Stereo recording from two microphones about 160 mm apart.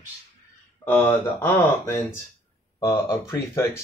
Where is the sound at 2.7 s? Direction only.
25° left (ahead or behind).